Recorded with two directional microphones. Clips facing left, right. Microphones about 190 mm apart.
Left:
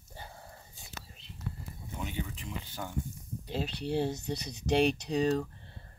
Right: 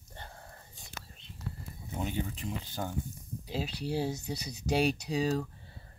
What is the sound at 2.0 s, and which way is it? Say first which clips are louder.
Speech: right 4 dB; 40° right (ahead or behind).